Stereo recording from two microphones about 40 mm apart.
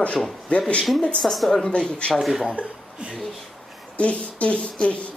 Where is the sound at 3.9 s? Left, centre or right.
Left.